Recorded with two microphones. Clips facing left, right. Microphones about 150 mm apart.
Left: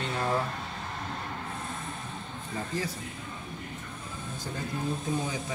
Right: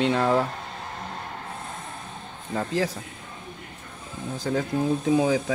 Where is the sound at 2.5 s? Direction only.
90° right.